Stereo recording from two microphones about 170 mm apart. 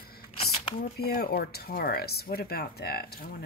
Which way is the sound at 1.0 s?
65° left (ahead or behind).